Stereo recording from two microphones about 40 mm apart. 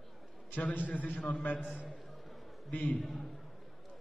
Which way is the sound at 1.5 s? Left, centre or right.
Centre.